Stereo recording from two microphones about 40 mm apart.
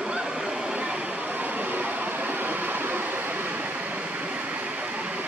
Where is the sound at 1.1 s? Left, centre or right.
Right.